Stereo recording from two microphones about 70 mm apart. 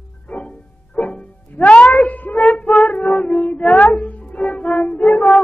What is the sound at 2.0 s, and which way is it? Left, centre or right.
Child singing, left.